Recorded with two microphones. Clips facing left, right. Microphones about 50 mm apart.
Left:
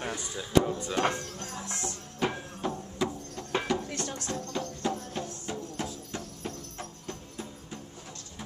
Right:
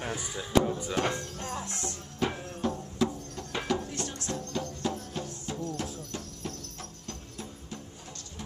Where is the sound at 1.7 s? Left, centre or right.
Left.